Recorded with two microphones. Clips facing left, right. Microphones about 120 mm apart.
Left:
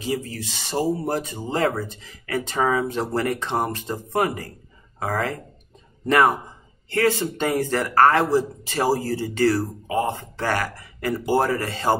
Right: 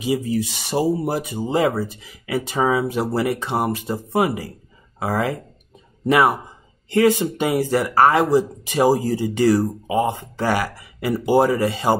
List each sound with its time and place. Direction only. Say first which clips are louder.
0.0 s speech: right 6 dB; 15° right (ahead or behind)